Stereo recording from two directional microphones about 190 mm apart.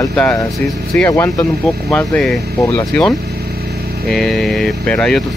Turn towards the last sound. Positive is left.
turn(degrees=5)  # may be behind; listen again after turning